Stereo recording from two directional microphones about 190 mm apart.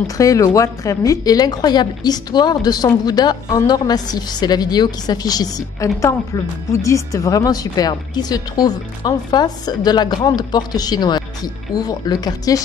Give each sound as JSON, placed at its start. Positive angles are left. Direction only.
{"t": 0.2, "sound": "a woman's voice", "side_deg": 15}